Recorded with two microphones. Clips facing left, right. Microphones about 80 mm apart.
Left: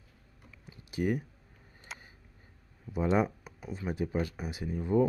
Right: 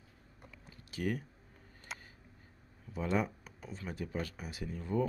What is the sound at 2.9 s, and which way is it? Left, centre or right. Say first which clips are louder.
Speech: left 6 dB; centre.